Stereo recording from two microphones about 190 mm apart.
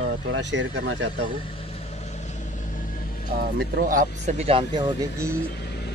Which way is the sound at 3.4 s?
50° right (ahead or behind).